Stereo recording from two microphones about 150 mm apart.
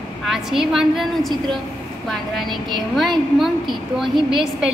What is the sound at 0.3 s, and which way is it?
A woman's voice, 5° right (ahead or behind).